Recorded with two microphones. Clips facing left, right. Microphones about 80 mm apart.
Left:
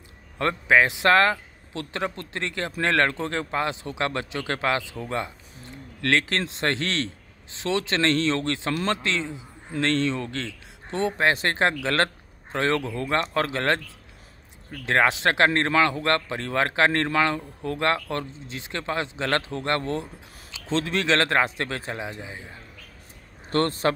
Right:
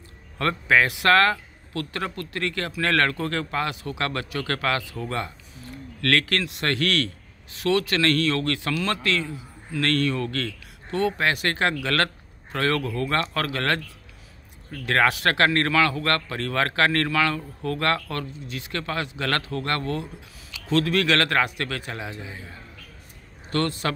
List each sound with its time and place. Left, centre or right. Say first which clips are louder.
0.4 s a man's voice: left 1 dB; centre
23.5 s a man's voice: left 2 dB; left